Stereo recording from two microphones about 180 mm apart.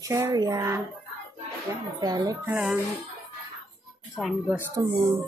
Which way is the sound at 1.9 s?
20° right (ahead or behind).